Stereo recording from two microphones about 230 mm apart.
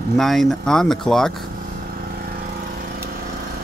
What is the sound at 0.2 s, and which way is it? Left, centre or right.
Speech, centre.